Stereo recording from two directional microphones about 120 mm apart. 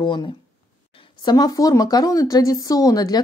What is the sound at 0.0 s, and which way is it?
Speech, 40° left (ahead or behind).